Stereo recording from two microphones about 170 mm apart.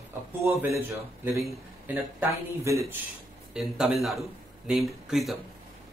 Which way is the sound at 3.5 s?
5° right (ahead or behind).